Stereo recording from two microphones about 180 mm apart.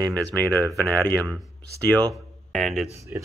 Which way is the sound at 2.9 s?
15° right (ahead or behind).